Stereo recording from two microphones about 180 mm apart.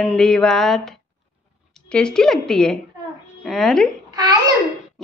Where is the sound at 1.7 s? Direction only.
5° left (ahead or behind).